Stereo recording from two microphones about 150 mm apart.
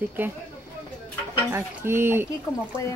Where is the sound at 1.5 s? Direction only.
15° right (ahead or behind).